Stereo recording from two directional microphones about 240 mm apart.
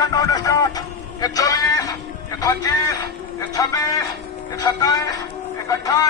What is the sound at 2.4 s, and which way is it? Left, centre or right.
A man's voice, centre.